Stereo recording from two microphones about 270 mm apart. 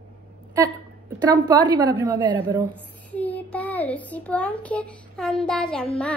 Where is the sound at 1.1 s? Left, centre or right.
Centre.